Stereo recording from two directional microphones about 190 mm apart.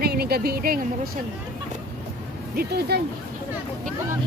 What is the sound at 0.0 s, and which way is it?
Speech, 55° right (ahead or behind).